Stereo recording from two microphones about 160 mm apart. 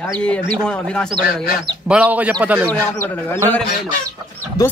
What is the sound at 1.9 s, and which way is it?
Speech, 10° right (ahead or behind).